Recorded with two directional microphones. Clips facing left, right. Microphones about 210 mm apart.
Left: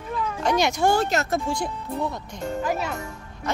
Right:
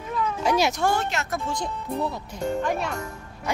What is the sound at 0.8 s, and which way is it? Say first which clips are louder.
Speech: left 4 dB; 35° left (ahead or behind).